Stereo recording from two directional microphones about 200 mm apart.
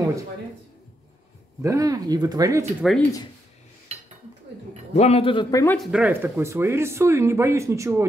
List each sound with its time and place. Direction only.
1.6 s speech: 15° right (ahead or behind)
2.8 s speech: centre (ahead or behind)
4.9 s a man's voice: 30° left (ahead or behind)
5.8 s speech: 5° right (ahead or behind)